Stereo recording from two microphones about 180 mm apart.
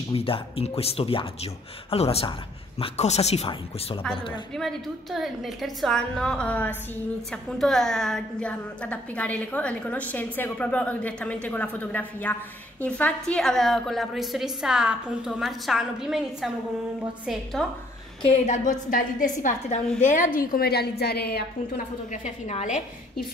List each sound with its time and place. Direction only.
0.1 s speech: 30° left (ahead or behind)
4.6 s a woman's voice: centre (ahead or behind)
18.2 s a woman's voice: 40° left (ahead or behind)
20.3 s a woman's voice: 60° left (ahead or behind)
22.1 s a woman's voice: 40° left (ahead or behind)